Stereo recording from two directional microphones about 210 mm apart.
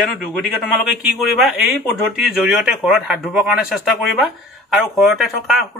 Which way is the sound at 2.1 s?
5° right (ahead or behind).